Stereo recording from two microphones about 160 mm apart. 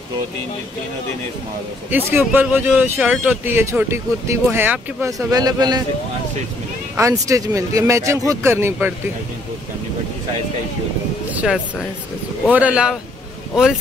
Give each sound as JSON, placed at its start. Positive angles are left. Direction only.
{"t": 1.9, "sound": "speech", "side_deg": -15}
{"t": 7.0, "sound": "speech", "side_deg": -20}
{"t": 11.3, "sound": "speech", "side_deg": -5}